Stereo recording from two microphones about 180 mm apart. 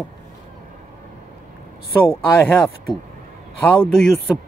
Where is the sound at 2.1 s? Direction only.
10° left (ahead or behind).